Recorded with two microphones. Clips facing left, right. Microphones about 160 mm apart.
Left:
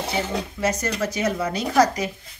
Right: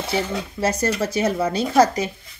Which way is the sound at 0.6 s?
30° right (ahead or behind).